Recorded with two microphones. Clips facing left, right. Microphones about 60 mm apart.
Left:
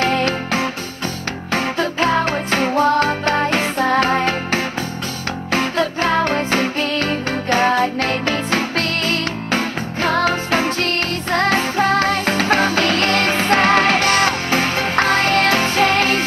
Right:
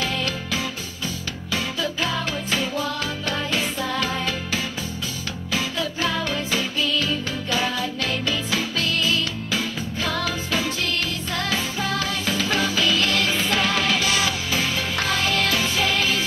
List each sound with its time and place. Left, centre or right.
0.0 s music: left